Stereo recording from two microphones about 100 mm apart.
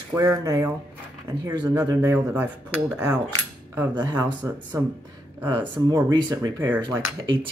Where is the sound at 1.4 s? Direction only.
45° right (ahead or behind).